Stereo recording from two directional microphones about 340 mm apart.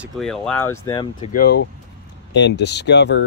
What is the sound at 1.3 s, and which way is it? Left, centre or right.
Speech, left.